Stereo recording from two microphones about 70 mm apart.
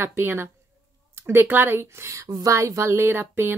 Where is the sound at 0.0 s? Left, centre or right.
Right.